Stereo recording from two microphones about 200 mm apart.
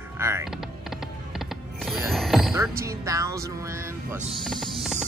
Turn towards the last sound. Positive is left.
turn(degrees=0)  # may be behind; listen again after turning